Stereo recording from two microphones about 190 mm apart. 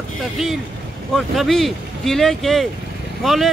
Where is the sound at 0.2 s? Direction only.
Centre (ahead or behind).